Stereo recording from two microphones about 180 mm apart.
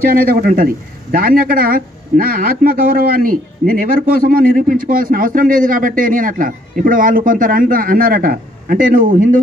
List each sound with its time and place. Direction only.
0.1 s a man's voice: 55° right (ahead or behind)